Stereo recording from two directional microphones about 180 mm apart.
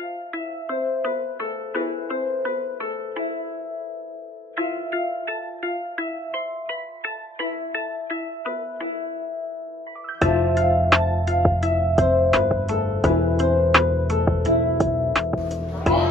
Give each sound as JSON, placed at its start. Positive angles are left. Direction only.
{"t": 10.1, "sound": "music", "side_deg": 0}